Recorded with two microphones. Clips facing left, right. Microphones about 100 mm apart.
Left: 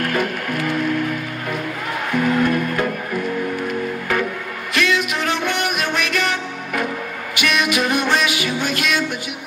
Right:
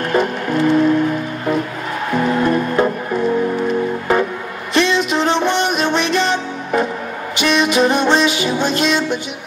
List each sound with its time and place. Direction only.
0.0 s music: 25° right (ahead or behind)